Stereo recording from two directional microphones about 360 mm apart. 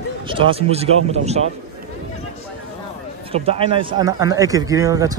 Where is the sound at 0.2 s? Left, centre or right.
Centre.